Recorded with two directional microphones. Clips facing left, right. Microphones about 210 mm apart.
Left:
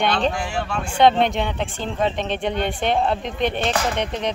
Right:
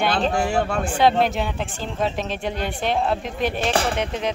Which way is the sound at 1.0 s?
5° right (ahead or behind).